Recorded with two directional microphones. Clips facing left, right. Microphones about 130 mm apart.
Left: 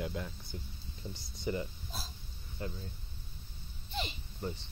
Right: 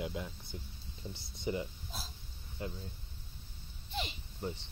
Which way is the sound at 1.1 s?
25° right (ahead or behind).